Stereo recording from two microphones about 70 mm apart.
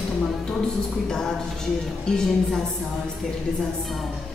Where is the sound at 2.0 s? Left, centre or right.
Centre.